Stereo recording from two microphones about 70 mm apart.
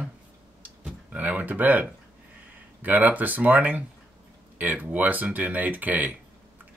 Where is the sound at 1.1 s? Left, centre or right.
Right.